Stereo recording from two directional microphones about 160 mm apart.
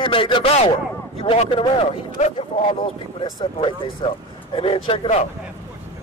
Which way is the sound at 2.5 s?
50° left (ahead or behind).